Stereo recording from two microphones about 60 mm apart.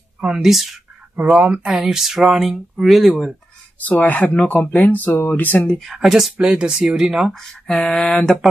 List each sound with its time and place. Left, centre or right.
0.2 s speech: centre
1.4 s speech: centre
3.8 s speech: left
5.9 s speech: centre
7.3 s speech: centre